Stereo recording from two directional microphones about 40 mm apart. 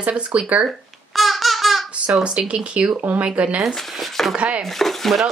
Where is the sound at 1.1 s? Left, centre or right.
Centre.